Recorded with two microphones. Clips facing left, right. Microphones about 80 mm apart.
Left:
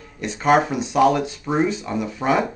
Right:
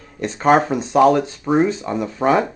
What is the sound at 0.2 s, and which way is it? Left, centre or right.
Speech, right.